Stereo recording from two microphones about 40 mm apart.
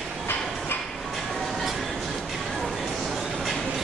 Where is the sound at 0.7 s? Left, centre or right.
Left.